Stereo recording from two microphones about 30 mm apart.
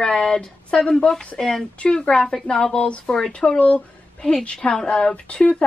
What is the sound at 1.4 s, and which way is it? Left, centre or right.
A woman's voice, centre.